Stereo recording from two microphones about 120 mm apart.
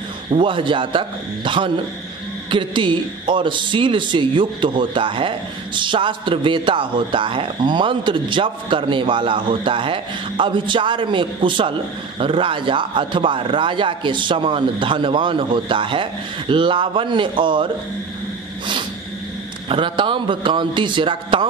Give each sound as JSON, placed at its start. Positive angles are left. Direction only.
{"t": 0.3, "sound": "a man's voice", "side_deg": -45}
{"t": 19.7, "sound": "a man's voice", "side_deg": -45}